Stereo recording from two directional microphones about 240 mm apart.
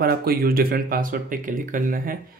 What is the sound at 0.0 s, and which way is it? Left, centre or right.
Speech, right.